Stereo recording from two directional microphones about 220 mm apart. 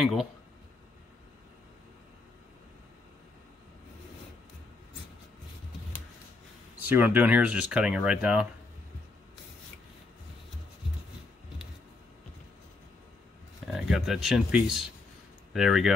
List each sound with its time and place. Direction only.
0.0 s speech: centre (ahead or behind)
6.9 s speech: 10° right (ahead or behind)
13.7 s speech: centre (ahead or behind)